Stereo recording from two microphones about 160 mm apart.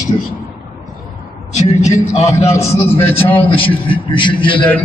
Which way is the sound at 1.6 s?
45° left (ahead or behind).